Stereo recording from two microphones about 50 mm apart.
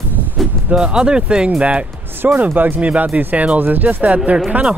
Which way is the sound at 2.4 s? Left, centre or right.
Right.